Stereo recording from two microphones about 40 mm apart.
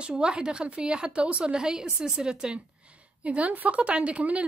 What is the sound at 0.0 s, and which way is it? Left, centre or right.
A woman's voice, right.